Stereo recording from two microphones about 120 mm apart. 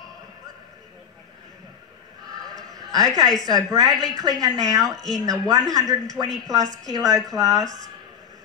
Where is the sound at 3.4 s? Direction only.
30° right (ahead or behind).